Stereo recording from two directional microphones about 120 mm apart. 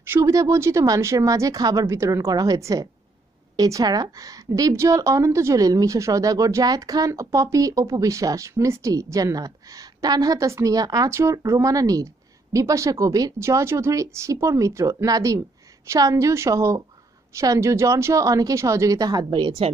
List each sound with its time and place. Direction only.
0.0 s a woman's voice: 20° right (ahead or behind); by 19.7 s 40° right (ahead or behind)